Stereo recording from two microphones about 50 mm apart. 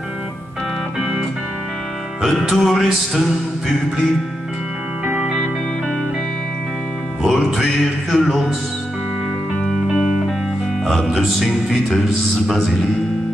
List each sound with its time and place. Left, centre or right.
2.2 s speech: centre
5.0 s music: right
7.2 s music: centre
9.9 s music: centre
10.9 s speech: centre